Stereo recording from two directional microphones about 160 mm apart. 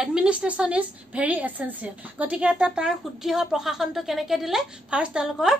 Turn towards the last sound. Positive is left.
turn(degrees=-5)  # may be behind; listen again after turning